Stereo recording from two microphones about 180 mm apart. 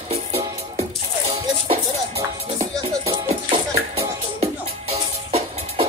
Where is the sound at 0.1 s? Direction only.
35° right (ahead or behind).